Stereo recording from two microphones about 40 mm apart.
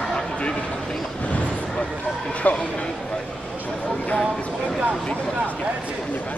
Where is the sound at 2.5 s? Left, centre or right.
Left.